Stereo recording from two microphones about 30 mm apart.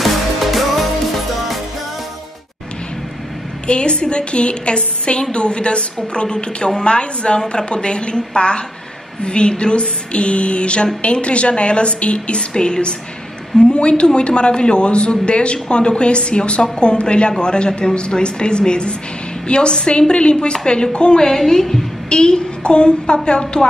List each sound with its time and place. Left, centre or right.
0.0 s music: centre
3.6 s a woman's voice: left
12.4 s a woman's voice: left
21.2 s a woman's voice: centre
22.1 s a woman's voice: left